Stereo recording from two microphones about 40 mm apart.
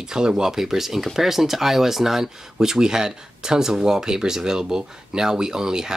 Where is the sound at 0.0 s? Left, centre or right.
Centre.